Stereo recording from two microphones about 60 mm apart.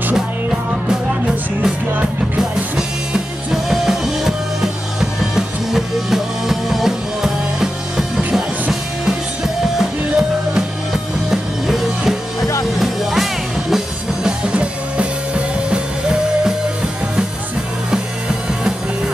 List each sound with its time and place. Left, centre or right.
3.6 s music: centre
14.5 s music: centre